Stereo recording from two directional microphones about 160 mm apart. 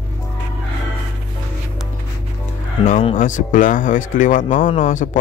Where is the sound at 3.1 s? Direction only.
55° left (ahead or behind).